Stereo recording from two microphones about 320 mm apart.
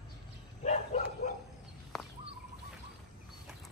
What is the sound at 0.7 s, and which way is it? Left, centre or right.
Bow-wow, left.